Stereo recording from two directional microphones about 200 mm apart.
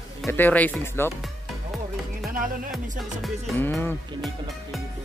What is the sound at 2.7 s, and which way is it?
Speech, 5° left (ahead or behind).